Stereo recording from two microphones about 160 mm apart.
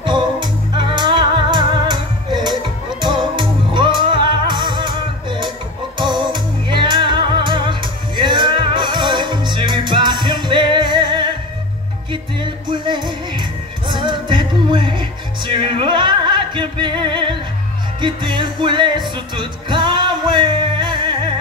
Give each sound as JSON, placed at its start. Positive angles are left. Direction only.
{"t": 0.0, "sound": "music", "side_deg": -30}